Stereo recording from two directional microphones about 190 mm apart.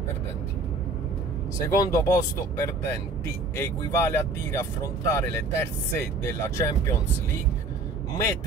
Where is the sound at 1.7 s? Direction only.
15° left (ahead or behind).